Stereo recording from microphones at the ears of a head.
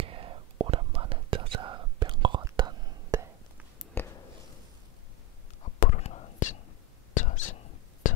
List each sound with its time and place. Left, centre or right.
0.0 s whispering: right
5.6 s whispering: left